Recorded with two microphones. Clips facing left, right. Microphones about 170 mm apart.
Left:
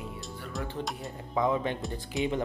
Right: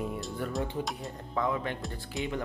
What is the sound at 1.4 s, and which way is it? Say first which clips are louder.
Speech: left 3 dB; 20° left (ahead or behind).